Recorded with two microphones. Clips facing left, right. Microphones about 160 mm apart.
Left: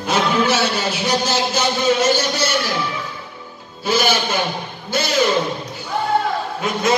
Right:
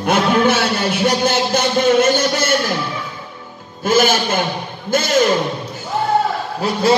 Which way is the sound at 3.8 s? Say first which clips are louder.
Right 4 dB; 50° right (ahead or behind).